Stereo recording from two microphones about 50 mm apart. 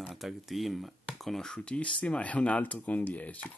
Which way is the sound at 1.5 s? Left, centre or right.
Left.